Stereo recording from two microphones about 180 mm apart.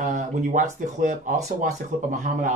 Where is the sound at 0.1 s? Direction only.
45° right (ahead or behind).